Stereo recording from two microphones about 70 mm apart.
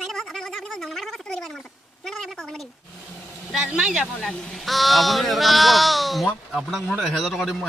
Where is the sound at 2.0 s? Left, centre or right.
Centre.